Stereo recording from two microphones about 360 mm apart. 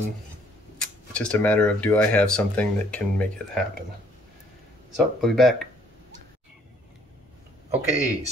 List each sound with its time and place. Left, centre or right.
0.7 s speech: centre
4.9 s speech: centre
7.7 s speech: centre